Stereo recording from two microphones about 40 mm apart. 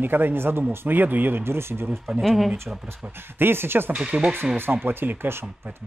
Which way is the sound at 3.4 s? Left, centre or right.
Right.